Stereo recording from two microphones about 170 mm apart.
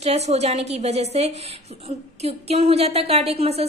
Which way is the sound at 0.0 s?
40° right (ahead or behind).